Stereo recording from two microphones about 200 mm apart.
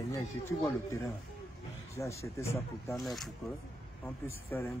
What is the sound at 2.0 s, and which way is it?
Speech, 15° left (ahead or behind).